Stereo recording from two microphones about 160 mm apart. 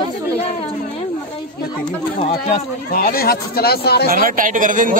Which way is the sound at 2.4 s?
60° left (ahead or behind).